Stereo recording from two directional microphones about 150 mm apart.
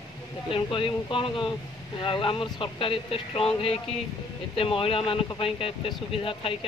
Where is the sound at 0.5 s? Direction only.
35° left (ahead or behind).